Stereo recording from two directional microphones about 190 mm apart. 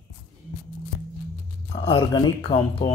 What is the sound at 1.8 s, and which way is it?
Speech, 30° left (ahead or behind).